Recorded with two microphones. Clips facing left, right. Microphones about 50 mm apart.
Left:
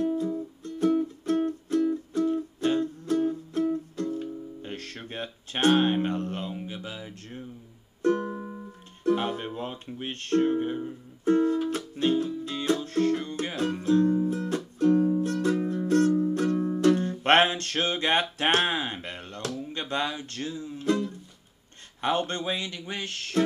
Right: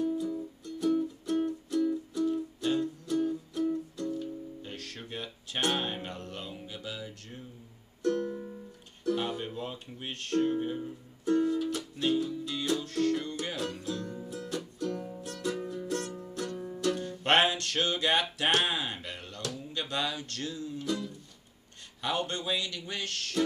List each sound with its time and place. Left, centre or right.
0.1 s music: left
22.0 s speech: left